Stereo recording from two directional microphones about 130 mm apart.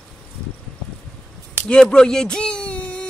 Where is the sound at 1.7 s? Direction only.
5° left (ahead or behind).